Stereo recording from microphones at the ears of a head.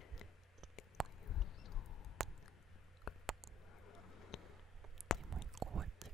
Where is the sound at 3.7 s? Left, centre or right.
Left.